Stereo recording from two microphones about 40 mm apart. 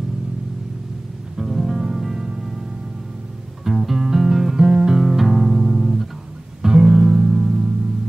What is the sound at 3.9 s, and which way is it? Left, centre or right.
Music, centre.